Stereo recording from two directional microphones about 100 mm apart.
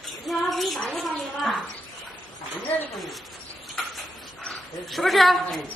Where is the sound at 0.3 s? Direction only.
Centre (ahead or behind).